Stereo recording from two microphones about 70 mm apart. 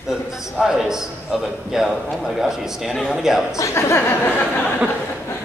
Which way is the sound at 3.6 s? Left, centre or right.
Left.